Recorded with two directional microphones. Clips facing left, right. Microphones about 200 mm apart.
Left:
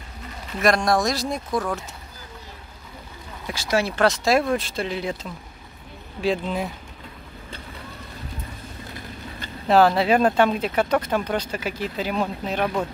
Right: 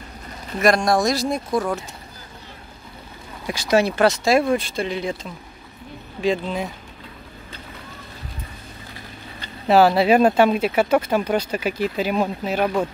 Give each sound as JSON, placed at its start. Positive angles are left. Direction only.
{"t": 0.6, "sound": "speech", "side_deg": 0}
{"t": 3.4, "sound": "speech", "side_deg": -15}
{"t": 4.0, "sound": "speech", "side_deg": 0}
{"t": 9.7, "sound": "speech", "side_deg": -10}